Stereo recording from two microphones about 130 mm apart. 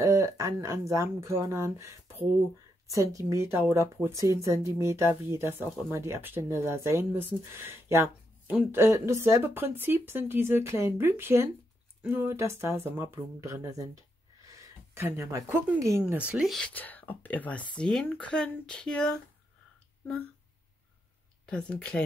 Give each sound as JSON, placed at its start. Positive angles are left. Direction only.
{"t": 0.0, "sound": "speech", "side_deg": -25}
{"t": 14.4, "sound": "a sound", "side_deg": -20}
{"t": 16.0, "sound": "speech", "side_deg": -10}
{"t": 21.5, "sound": "speech", "side_deg": 10}